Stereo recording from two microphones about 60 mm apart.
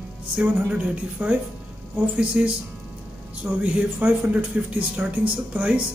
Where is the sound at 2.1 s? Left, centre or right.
Centre.